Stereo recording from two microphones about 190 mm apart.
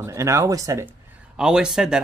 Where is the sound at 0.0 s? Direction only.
15° right (ahead or behind).